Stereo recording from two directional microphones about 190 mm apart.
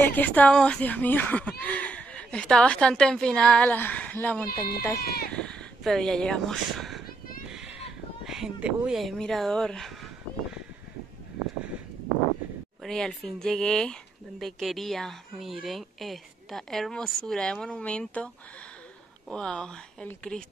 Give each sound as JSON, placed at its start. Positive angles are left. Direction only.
{"t": 0.0, "sound": "speech", "side_deg": 10}
{"t": 4.5, "sound": "speech", "side_deg": 55}
{"t": 5.3, "sound": "speech", "side_deg": 5}
{"t": 7.4, "sound": "a sound", "side_deg": -5}
{"t": 8.3, "sound": "speech", "side_deg": -5}
{"t": 12.8, "sound": "speech", "side_deg": 5}